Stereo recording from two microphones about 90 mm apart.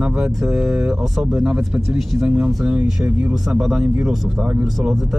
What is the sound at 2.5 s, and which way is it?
Speech, 5° right (ahead or behind).